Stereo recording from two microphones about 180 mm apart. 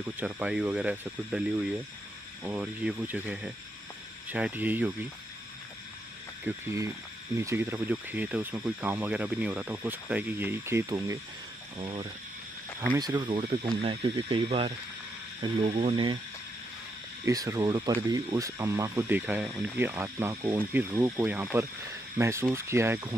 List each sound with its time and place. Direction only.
0.2 s speech: 5° right (ahead or behind)
6.4 s speech: 15° right (ahead or behind)
11.8 s speech: 30° right (ahead or behind)
17.2 s speech: 20° right (ahead or behind)